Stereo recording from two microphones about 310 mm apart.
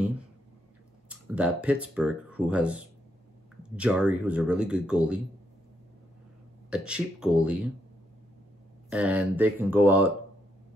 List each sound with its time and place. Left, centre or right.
1.2 s speech: centre
6.7 s speech: centre
8.9 s speech: centre